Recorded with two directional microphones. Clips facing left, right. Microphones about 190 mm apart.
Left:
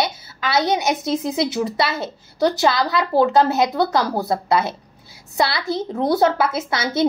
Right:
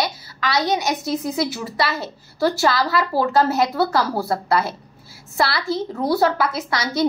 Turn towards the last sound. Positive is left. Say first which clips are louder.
# left 1 dB
turn(degrees=25)  # may be behind; listen again after turning